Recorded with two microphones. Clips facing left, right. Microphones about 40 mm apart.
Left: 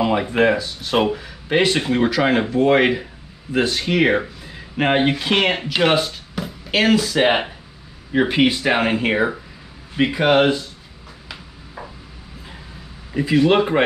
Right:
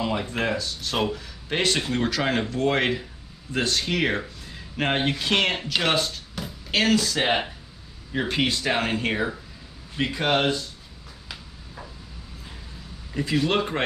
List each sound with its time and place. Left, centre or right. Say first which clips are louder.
0.0 s speech: left 9 dB; left
13.1 s speech: left 8 dB; centre